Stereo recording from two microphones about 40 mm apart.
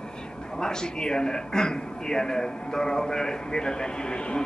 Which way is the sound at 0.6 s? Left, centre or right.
Centre.